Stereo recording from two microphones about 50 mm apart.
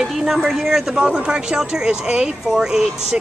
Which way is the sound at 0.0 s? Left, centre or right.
Centre.